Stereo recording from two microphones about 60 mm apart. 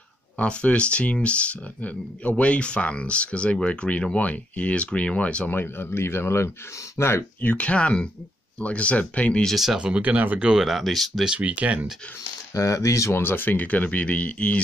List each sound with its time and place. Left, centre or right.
0.4 s speech: left
5.5 s speech: left
7.4 s speech: left
9.8 s speech: centre
10.0 s speech: right
10.4 s speech: centre
11.2 s speech: right
12.2 s speech: left
13.2 s speech: left